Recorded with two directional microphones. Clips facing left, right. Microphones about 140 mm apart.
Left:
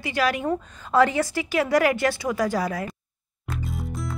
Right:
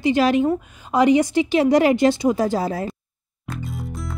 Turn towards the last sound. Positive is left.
turn(degrees=0)  # may be behind; listen again after turning